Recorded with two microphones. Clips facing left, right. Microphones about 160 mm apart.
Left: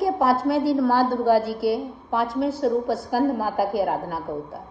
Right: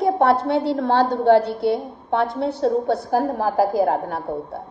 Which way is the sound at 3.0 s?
25° right (ahead or behind).